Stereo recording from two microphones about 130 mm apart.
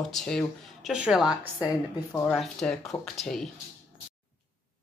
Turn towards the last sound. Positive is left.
turn(degrees=0)  # may be behind; listen again after turning